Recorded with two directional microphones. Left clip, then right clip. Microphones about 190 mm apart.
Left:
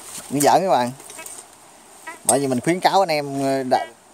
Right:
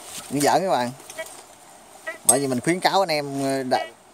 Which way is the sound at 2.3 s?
20° left (ahead or behind).